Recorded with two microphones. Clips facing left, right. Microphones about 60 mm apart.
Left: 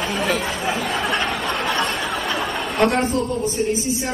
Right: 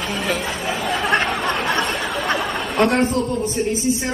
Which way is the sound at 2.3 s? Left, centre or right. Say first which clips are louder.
Right 2 dB; centre.